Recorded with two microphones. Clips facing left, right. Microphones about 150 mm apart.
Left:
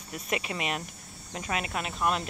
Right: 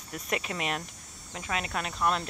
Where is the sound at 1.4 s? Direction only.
15° left (ahead or behind).